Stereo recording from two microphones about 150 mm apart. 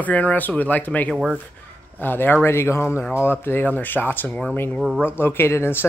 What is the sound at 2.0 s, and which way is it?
Speech, 15° left (ahead or behind).